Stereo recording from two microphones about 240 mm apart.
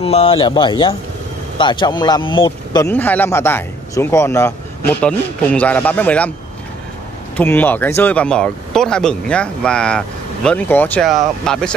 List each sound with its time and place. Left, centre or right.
0.0 s speech: left; by 6.3 s centre
7.3 s speech: centre